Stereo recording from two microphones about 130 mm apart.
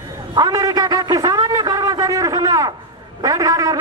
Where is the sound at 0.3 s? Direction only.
25° right (ahead or behind).